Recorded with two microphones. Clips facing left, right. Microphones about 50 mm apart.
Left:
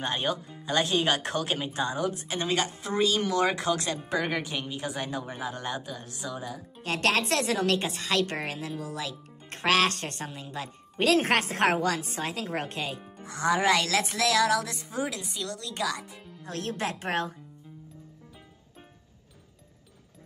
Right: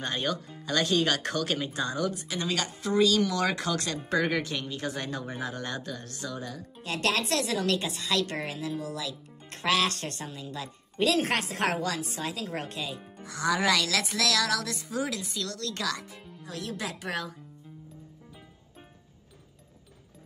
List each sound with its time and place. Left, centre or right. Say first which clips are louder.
0.0 s a woman's voice: left 1 dB; left
2.1 s a woman's voice: left 3 dB; left
4.0 s speech: right 2 dB; centre
6.8 s a woman's voice: left 2 dB; left; by 16.3 s centre
16.4 s a woman's voice: left 4 dB; left